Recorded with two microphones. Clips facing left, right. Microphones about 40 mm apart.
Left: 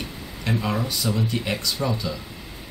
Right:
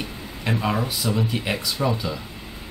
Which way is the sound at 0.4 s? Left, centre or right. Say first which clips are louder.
Right 1 dB; centre.